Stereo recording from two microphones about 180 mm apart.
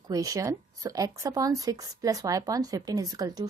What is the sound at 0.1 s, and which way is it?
Speech, 20° right (ahead or behind).